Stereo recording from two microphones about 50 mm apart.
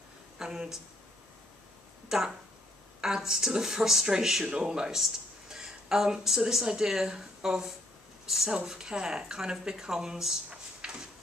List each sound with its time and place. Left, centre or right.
0.4 s a woman's voice: centre
2.0 s speech: centre
10.5 s drawer open or close: centre